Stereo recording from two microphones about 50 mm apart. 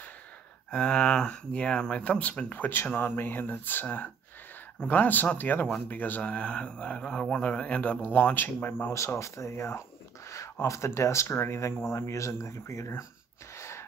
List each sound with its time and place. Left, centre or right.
0.7 s speech: centre; by 6.3 s left
6.3 s speech: left
8.0 s speech: left
8.9 s speech: left
9.5 s speech: left
10.7 s speech: left
13.6 s gasp: left